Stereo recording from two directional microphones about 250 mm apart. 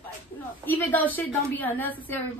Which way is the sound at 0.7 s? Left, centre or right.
Centre.